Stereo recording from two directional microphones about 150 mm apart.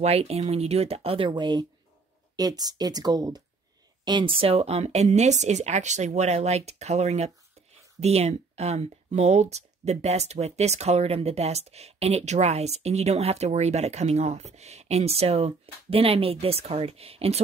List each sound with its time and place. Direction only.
0.0 s speech: 45° right (ahead or behind)